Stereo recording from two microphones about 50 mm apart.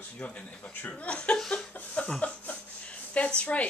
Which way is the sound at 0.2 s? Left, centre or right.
Left.